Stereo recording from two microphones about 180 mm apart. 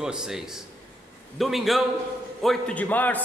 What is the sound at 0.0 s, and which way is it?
A man's voice, 5° right (ahead or behind).